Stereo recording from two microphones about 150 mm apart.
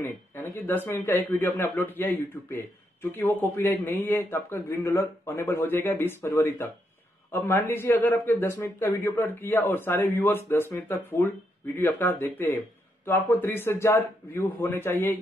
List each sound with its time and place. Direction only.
0.0 s speech: 15° left (ahead or behind)